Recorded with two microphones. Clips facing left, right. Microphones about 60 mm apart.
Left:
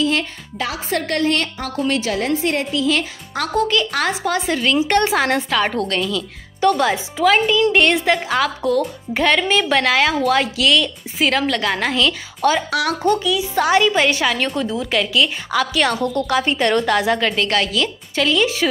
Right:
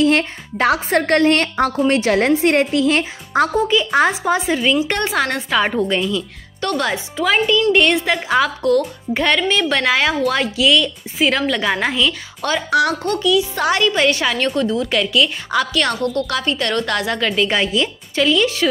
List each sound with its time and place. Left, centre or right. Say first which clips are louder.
0.0 s a woman's voice: right 4 dB; right
3.5 s a woman's voice: left 2 dB; centre
4.4 s a woman's voice: right 1 dB; centre
5.6 s a woman's voice: right 2 dB; centre
6.6 s a woman's voice: left 4 dB; centre
16.0 s a woman's voice: left 1 dB; centre
17.5 s a woman's voice: right 1 dB; centre
17.8 s a woman's voice: right 2 dB; centre